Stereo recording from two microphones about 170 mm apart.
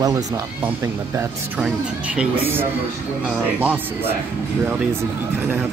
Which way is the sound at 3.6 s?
10° right (ahead or behind).